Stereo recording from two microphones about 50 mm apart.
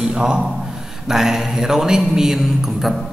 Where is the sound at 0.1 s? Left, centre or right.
Centre.